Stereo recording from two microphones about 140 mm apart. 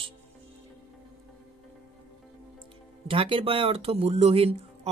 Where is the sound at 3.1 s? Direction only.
40° right (ahead or behind).